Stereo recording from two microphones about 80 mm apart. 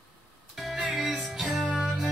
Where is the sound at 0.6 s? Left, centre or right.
Centre.